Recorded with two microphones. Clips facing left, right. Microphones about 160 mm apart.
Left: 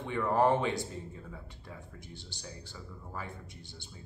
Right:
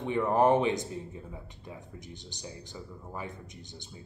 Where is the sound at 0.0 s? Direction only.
20° right (ahead or behind).